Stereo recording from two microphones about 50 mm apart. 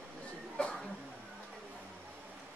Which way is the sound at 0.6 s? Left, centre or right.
Centre.